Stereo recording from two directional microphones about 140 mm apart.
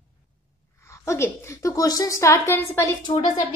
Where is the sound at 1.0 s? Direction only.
20° left (ahead or behind).